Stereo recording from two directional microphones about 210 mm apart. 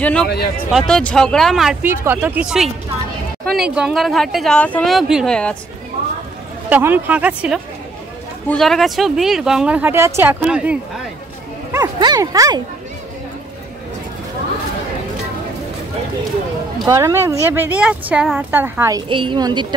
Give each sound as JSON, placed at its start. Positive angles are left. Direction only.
{"t": 0.0, "sound": "speech", "side_deg": 5}
{"t": 0.3, "sound": "speech", "side_deg": 50}
{"t": 0.7, "sound": "speech", "side_deg": 0}
{"t": 6.7, "sound": "speech", "side_deg": -10}
{"t": 11.7, "sound": "speech", "side_deg": -20}
{"t": 16.8, "sound": "speech", "side_deg": -15}